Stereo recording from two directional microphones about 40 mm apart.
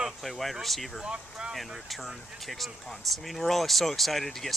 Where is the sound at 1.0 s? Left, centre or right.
Right.